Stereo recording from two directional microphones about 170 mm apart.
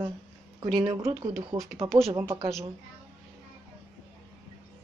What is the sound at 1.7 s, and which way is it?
Speech, 15° right (ahead or behind).